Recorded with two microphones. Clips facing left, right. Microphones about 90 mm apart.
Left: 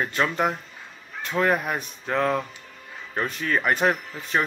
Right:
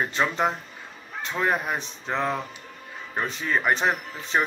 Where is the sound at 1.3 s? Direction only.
10° right (ahead or behind).